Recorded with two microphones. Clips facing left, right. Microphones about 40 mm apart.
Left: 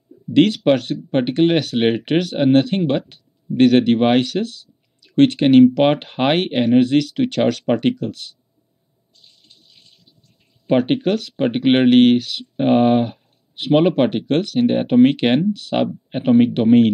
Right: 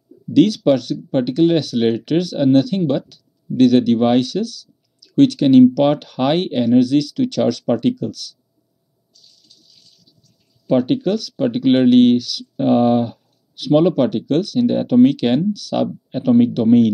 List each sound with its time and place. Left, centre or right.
0.3 s speech: left
0.6 s speech: centre
1.5 s speech: left
7.6 s speech: left
9.1 s a sound: left
12.2 s speech: left